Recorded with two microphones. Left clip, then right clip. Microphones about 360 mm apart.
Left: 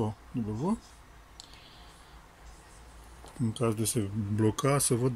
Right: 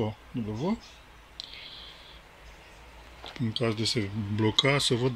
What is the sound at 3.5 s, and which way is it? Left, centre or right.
Speech, centre.